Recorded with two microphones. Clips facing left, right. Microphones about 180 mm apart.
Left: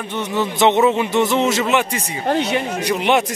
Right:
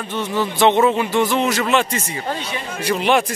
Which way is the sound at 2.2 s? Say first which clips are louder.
Left 7 dB; 65° left (ahead or behind).